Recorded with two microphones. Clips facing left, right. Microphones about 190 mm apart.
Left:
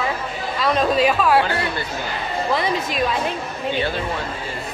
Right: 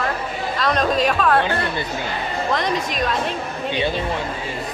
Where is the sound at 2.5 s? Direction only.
5° left (ahead or behind).